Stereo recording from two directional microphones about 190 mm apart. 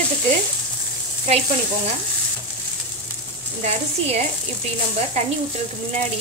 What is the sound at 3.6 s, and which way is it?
Speech, 35° right (ahead or behind).